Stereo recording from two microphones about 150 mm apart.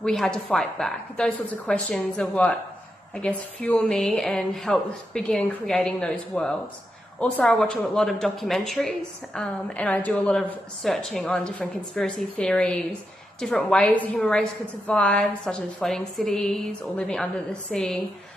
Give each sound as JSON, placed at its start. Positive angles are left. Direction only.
{"t": 0.0, "sound": "speech", "side_deg": 5}